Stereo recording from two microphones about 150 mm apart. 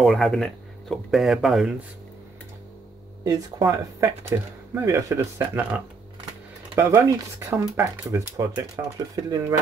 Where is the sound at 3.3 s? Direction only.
25° right (ahead or behind).